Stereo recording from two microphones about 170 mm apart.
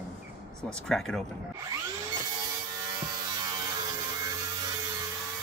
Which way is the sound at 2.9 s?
25° right (ahead or behind).